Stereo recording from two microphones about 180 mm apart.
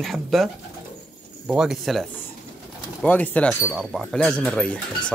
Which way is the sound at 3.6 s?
5° right (ahead or behind).